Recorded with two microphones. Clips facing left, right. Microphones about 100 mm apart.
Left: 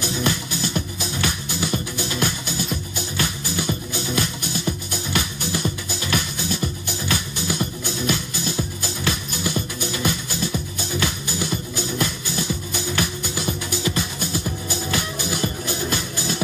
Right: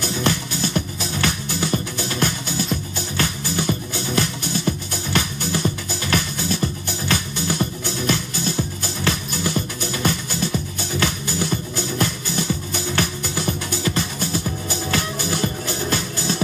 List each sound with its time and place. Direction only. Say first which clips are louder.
0.6 s music: right 2 dB; 40° right (ahead or behind)
13.5 s music: even; 40° right (ahead or behind)
15.4 s music: right 1 dB; 35° right (ahead or behind)